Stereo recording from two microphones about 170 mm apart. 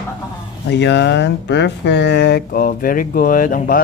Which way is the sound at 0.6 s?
90° left.